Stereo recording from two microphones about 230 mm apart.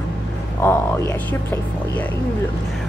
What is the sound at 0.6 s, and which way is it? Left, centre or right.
Speech, centre.